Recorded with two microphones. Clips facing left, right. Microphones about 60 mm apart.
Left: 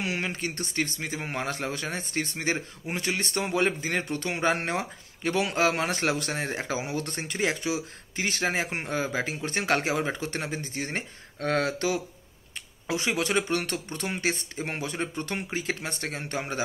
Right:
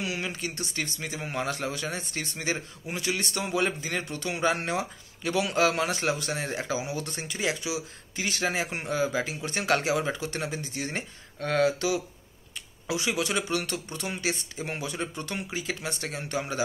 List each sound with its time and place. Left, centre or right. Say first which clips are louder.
0.0 s a man's voice: left 2 dB; left
5.9 s speech: left 1 dB; left
6.3 s a man's voice: left 1 dB; left
6.7 s a man's voice: left 1 dB; left